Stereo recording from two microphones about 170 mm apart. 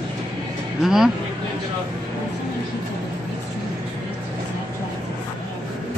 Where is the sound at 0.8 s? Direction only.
Centre (ahead or behind).